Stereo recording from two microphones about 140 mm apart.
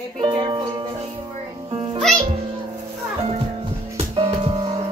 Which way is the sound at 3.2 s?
40° right (ahead or behind).